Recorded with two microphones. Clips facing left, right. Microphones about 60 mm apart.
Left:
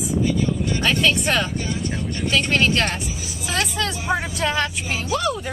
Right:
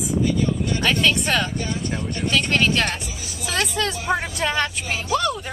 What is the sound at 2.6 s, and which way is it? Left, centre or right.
Speech, centre.